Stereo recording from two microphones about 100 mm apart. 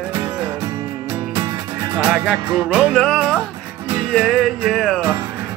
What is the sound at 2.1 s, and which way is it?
Music, 10° right (ahead or behind).